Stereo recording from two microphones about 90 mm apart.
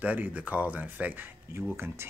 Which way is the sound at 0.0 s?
20° right (ahead or behind).